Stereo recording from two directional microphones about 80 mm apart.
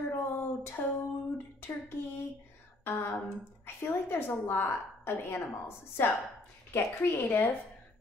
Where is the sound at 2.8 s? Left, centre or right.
Left.